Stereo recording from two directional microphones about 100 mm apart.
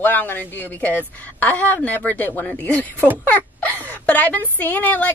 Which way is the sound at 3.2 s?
15° left (ahead or behind).